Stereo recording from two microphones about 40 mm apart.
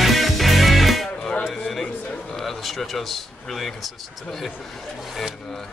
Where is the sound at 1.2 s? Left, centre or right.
Centre.